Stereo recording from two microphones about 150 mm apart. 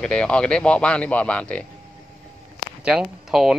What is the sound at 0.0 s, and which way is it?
Speech, 5° left (ahead or behind).